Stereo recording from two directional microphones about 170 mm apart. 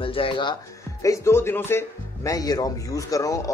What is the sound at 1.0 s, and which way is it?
Speech, 15° left (ahead or behind).